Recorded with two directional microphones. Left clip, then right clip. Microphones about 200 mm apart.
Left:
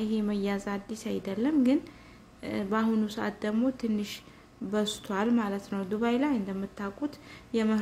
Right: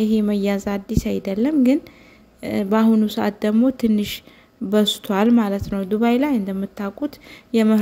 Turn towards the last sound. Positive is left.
turn(degrees=-35)  # may be behind; listen again after turning